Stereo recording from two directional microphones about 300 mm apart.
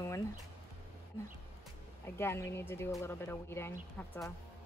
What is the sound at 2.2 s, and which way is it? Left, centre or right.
Speech, centre.